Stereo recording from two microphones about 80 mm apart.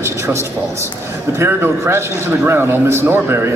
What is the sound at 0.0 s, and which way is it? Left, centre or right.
A man's voice, right.